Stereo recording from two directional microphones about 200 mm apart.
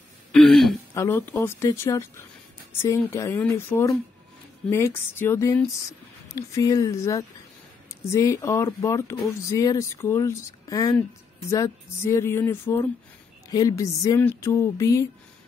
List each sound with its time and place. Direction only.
0.3 s throat clearing: centre (ahead or behind)
0.9 s speech: 15° left (ahead or behind)